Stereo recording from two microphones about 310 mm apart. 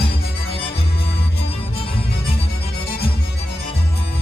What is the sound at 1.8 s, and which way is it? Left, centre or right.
Music, centre.